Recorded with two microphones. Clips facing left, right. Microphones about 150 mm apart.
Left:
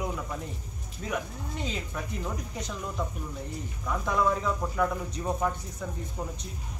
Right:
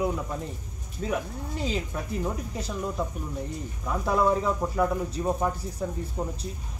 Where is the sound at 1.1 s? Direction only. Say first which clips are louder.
Right 2 dB; 35° right (ahead or behind).